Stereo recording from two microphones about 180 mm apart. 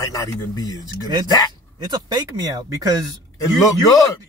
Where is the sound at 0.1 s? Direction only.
20° left (ahead or behind).